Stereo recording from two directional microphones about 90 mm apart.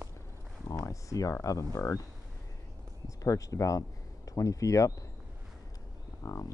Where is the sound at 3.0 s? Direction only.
40° left (ahead or behind).